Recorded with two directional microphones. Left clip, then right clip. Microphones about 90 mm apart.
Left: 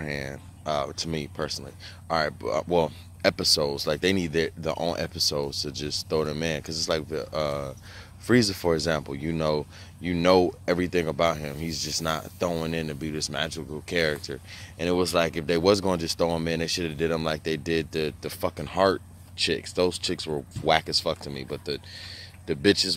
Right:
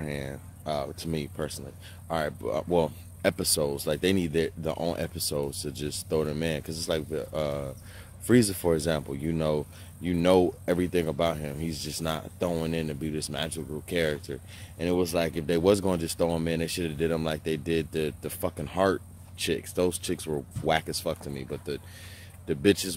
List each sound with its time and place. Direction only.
0.0 s speech: 15° right (ahead or behind)